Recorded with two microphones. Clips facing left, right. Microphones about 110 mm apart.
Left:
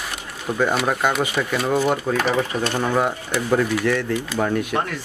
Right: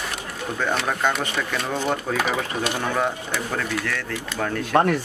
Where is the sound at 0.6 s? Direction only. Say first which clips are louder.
Left 4 dB; 10° left (ahead or behind).